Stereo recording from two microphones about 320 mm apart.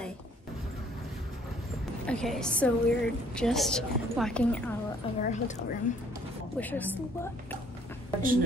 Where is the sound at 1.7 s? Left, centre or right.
Centre.